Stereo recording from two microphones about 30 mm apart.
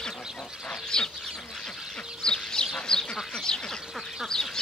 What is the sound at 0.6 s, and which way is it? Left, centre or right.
Speech, left.